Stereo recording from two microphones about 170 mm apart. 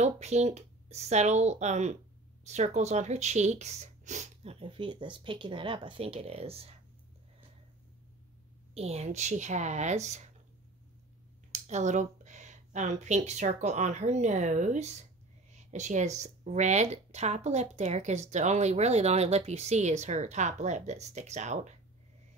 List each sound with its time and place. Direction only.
0.0 s speech: 40° right (ahead or behind)
8.7 s speech: 40° right (ahead or behind)
11.5 s speech: 45° right (ahead or behind)